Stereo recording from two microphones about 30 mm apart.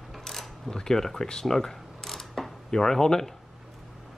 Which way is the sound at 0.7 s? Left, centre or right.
Left.